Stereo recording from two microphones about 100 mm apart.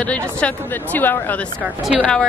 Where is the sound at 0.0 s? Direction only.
10° left (ahead or behind).